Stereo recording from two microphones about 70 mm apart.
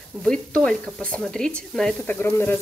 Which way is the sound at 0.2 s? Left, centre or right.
Centre.